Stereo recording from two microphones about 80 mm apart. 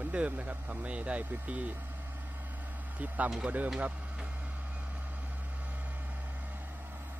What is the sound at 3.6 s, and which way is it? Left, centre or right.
Speech, centre.